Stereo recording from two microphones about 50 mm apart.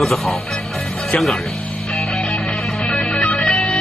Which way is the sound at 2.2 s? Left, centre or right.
Centre.